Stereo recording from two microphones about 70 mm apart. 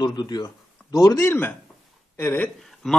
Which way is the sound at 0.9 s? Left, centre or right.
Left.